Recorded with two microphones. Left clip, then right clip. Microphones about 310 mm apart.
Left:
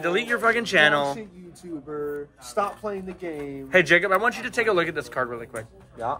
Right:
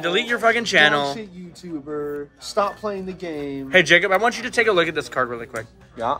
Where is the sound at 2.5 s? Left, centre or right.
Right.